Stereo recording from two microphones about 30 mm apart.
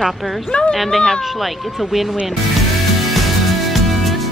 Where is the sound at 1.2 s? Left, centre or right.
Centre.